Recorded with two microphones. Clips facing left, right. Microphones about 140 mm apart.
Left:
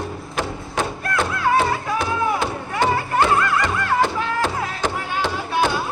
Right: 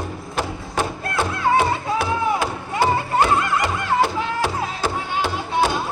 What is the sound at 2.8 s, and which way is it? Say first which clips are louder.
Music: right 1 dB; 10° right (ahead or behind).